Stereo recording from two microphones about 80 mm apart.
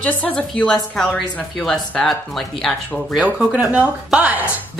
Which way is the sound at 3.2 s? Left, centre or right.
Centre.